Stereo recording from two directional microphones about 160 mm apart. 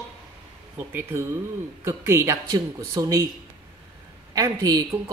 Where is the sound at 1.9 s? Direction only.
15° right (ahead or behind).